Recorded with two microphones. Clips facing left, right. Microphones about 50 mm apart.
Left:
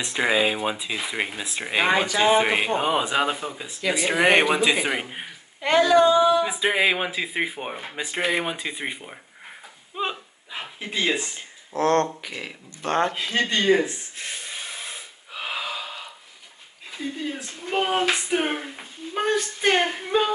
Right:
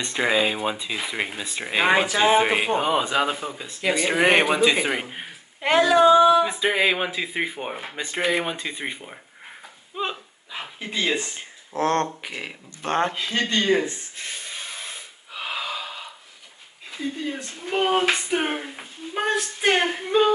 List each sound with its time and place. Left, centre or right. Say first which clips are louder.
0.0 s speech: even; centre
5.6 s speech: even; centre
6.4 s speech: even; centre
11.3 s speech: even; right
13.1 s a sound: even; centre
16.9 s speech: right 1 dB; centre